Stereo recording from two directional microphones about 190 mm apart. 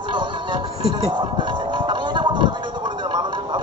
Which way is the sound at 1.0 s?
25° right (ahead or behind).